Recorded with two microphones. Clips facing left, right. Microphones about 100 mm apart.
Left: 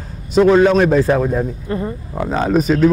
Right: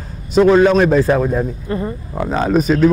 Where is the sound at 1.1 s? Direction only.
15° right (ahead or behind).